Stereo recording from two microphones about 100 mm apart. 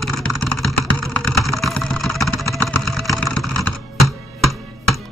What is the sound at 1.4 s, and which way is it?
Vehicle, centre (ahead or behind).